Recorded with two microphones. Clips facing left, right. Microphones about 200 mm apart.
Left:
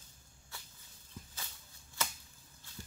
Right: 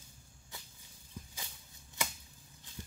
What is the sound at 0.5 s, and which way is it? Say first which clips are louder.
Snake: right 1 dB; 20° right (ahead or behind).